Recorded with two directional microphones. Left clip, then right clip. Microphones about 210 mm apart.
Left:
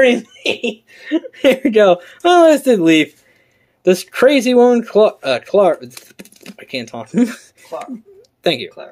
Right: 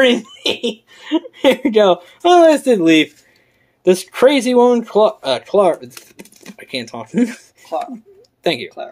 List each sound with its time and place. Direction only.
0.0 s speech: 5° left (ahead or behind)
8.5 s speech: 15° left (ahead or behind)